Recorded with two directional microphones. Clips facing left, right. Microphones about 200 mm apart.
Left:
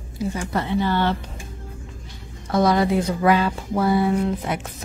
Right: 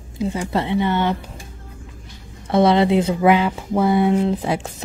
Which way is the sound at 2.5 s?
25° right (ahead or behind).